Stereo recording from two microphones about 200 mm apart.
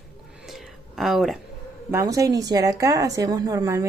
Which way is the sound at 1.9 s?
15° right (ahead or behind).